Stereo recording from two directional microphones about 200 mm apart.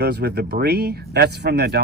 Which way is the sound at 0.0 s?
55° right (ahead or behind).